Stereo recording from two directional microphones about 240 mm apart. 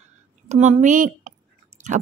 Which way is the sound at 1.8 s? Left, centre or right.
Right.